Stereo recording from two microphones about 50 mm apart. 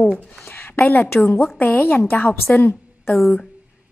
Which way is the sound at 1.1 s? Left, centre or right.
Left.